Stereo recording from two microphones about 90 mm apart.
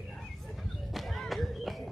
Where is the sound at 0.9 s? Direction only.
Centre (ahead or behind).